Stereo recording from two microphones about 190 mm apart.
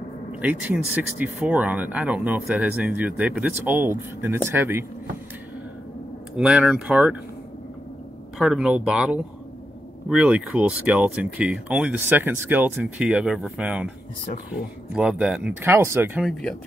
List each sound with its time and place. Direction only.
0.4 s speech: 10° right (ahead or behind)
6.3 s speech: 5° right (ahead or behind)
8.4 s speech: centre (ahead or behind)
16.2 s speech: centre (ahead or behind)